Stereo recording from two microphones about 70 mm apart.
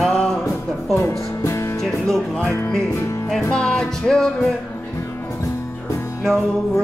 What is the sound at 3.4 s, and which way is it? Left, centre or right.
Music, centre.